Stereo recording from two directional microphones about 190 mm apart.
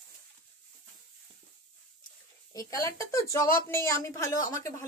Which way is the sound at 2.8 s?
15° left (ahead or behind).